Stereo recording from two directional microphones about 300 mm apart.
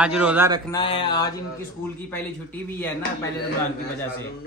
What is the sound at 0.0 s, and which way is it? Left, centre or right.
Speech, centre.